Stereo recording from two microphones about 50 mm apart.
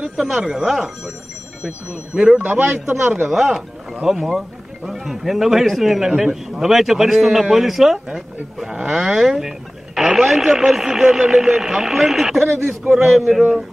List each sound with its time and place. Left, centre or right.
0.2 s speech: centre
2.4 s a man's voice: right
2.7 s a man's voice: centre